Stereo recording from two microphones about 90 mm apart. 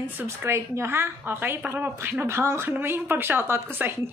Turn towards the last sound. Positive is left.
turn(degrees=-25)  # may be behind; listen again after turning